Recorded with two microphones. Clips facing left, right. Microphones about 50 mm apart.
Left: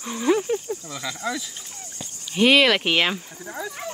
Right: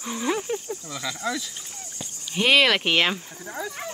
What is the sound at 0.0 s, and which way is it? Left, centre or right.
Speech, centre.